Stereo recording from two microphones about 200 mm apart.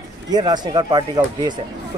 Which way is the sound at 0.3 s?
20° right (ahead or behind).